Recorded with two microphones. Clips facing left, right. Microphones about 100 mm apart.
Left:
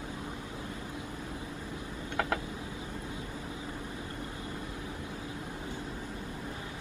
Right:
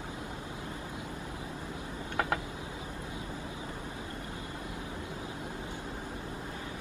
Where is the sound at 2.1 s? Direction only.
30° right (ahead or behind).